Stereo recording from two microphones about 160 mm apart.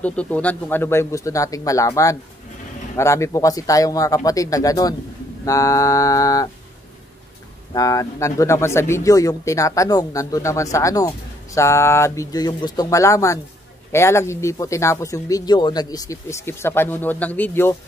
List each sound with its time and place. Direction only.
0.0 s speech: 10° left (ahead or behind)
7.7 s speech: 20° left (ahead or behind)